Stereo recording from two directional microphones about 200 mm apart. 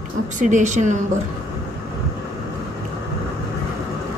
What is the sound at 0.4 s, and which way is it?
Speech, 40° right (ahead or behind).